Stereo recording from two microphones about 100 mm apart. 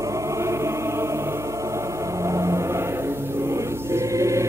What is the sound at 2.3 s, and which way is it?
Vehicle, 30° right (ahead or behind).